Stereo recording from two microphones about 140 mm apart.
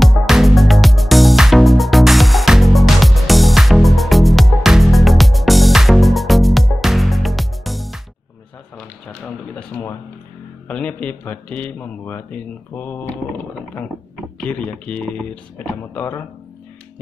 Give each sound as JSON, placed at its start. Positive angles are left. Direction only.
{"t": 0.0, "sound": "music", "side_deg": 0}
{"t": 9.6, "sound": "a sound", "side_deg": 15}
{"t": 10.7, "sound": "a man's voice", "side_deg": 10}
{"t": 14.4, "sound": "a man's voice", "side_deg": 10}